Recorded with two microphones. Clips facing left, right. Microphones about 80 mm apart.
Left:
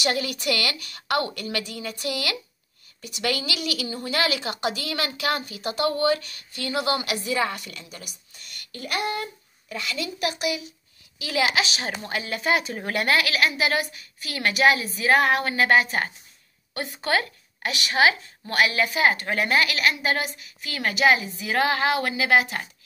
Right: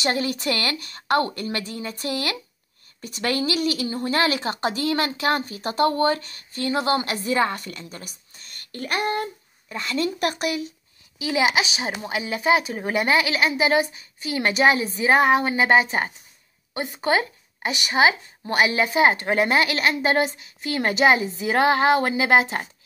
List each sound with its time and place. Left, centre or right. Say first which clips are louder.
0.0 s speech: right 2 dB; right
8.4 s a sound: right 4 dB; right
9.7 s speech: right 5 dB; right
11.1 s speech: right 3 dB; right